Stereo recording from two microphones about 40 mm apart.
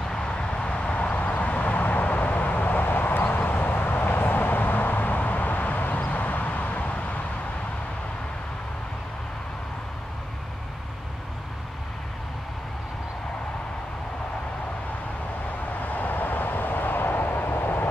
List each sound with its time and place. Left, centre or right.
0.1 s vehicle: left
15.8 s vehicle: left